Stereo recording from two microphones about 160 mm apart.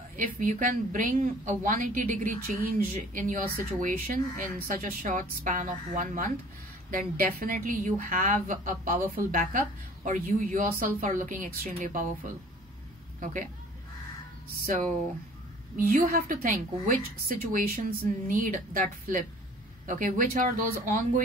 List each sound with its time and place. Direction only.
0.1 s a woman's voice: 55° right (ahead or behind)
13.2 s a woman's voice: 55° right (ahead or behind)
14.7 s a woman's voice: 50° right (ahead or behind)
15.7 s a woman's voice: 60° right (ahead or behind)